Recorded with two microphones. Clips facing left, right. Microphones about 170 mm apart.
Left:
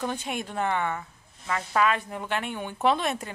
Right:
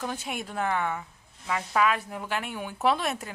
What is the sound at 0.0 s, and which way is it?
Speech, 5° right (ahead or behind).